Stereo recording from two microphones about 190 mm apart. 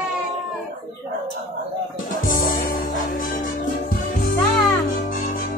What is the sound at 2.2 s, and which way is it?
Music, 45° left (ahead or behind).